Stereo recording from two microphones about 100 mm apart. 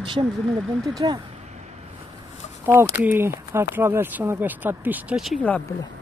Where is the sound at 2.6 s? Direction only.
20° right (ahead or behind).